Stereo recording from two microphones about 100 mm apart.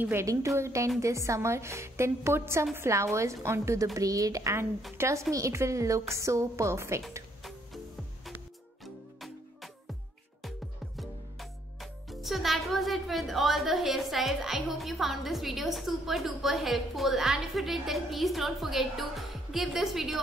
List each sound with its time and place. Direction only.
0.0 s a woman's voice: 25° right (ahead or behind)
8.8 s music: centre (ahead or behind)
11.0 s speech: centre (ahead or behind)